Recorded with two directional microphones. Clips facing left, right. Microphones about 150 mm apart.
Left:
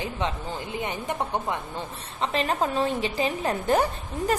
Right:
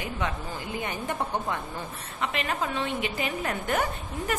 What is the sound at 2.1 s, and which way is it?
A woman's voice, 30° left (ahead or behind).